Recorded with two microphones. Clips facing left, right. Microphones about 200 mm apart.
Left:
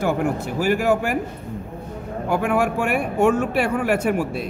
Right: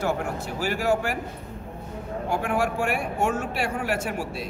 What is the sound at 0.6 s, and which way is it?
Speech, 55° left (ahead or behind).